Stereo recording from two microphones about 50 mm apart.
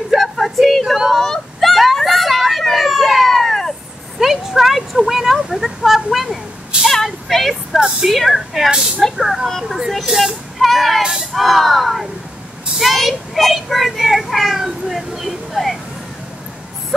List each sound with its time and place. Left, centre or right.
0.1 s a sound: centre
4.2 s a sound: centre
6.7 s vehicle: right
7.2 s speech: centre
9.2 s a child's voice: centre
11.0 s a child's voice: centre